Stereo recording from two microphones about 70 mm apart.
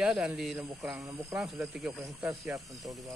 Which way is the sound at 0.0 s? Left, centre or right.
Centre.